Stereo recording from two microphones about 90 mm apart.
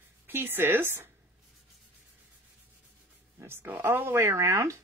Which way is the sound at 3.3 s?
25° right (ahead or behind).